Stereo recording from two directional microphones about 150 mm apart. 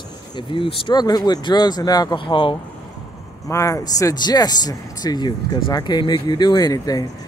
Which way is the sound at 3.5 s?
20° left (ahead or behind).